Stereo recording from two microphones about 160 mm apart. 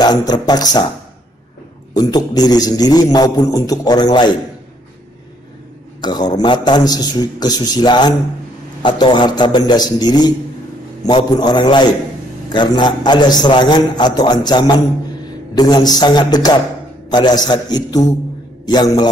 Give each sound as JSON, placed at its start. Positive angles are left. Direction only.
{"t": 0.0, "sound": "a man's voice", "side_deg": 25}
{"t": 2.0, "sound": "a man's voice", "side_deg": 25}
{"t": 5.9, "sound": "a man's voice", "side_deg": 25}